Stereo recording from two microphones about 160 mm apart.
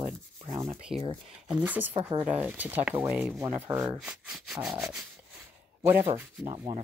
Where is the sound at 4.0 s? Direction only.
Centre (ahead or behind).